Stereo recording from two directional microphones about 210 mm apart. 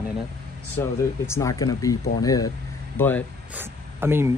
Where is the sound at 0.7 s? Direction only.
10° left (ahead or behind).